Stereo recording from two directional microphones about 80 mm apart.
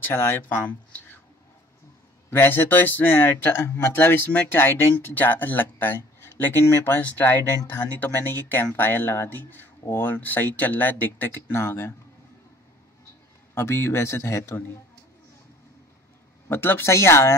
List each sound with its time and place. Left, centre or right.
0.0 s speech: left
2.3 s speech: left
13.6 s speech: left
16.4 s speech: left